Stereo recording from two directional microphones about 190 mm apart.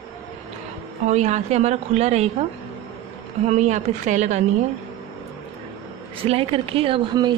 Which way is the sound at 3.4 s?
35° right (ahead or behind).